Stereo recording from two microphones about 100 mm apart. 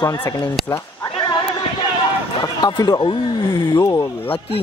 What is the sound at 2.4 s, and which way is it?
Speech, 45° left (ahead or behind).